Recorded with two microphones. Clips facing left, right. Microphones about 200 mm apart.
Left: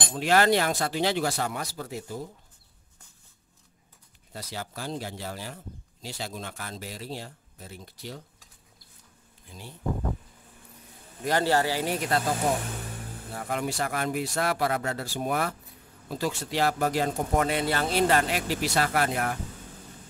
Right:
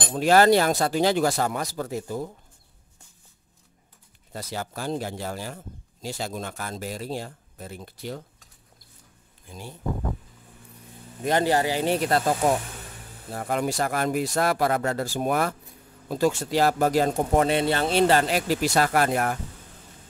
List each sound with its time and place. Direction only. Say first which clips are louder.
0.1 s speech: right 5 dB; 40° right (ahead or behind)
4.3 s speech: right 4 dB; 50° right (ahead or behind)
11.2 s speech: right 2 dB; 20° right (ahead or behind)
13.3 s speech: right 4 dB; 45° right (ahead or behind)
17.5 s speech: right 4 dB; 25° right (ahead or behind); by 19.3 s 45° right (ahead or behind)